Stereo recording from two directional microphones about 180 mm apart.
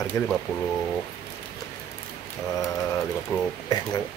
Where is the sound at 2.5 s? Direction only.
20° left (ahead or behind).